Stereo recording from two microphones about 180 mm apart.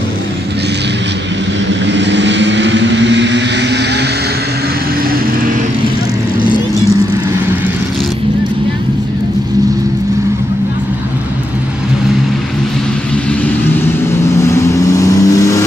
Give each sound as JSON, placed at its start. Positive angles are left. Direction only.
{"t": 1.9, "sound": "vehicle", "side_deg": -75}
{"t": 14.4, "sound": "vehicle", "side_deg": 15}